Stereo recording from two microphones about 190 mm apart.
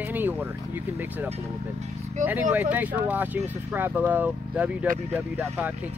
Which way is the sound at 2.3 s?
10° right (ahead or behind).